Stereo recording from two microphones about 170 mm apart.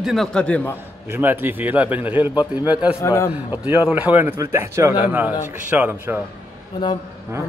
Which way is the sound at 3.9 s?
10° right (ahead or behind).